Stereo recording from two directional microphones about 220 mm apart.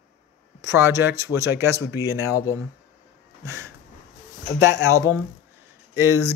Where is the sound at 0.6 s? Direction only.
10° right (ahead or behind).